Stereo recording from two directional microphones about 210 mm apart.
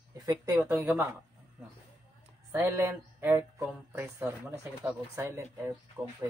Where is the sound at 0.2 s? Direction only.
20° right (ahead or behind).